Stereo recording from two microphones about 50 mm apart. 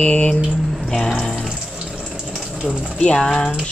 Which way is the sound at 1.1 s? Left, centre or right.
Centre.